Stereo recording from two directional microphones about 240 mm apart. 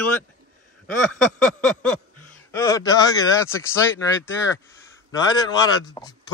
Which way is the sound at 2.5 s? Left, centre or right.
Centre.